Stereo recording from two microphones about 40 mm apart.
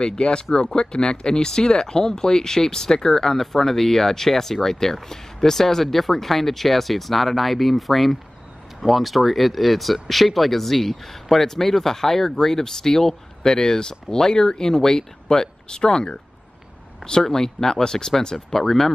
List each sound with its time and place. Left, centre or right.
0.0 s speech: left; by 18.9 s centre